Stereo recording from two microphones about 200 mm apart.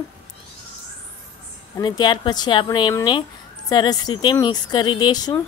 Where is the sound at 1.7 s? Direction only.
20° left (ahead or behind).